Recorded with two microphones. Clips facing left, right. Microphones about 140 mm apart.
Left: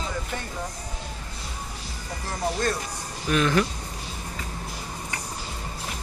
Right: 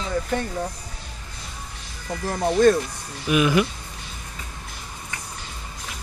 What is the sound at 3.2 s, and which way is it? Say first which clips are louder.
Speech: right 3 dB; 10° right (ahead or behind).